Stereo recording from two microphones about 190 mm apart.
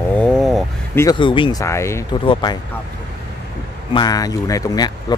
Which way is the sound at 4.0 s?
20° left (ahead or behind).